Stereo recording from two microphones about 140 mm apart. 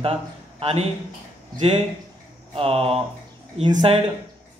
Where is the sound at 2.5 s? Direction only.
40° right (ahead or behind).